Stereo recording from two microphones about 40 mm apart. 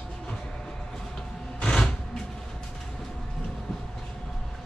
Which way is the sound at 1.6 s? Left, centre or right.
Left.